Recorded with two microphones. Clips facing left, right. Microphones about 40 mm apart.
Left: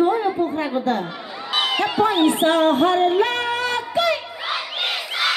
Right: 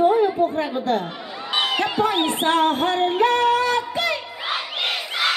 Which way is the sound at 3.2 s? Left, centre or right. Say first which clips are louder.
Right 4 dB; left.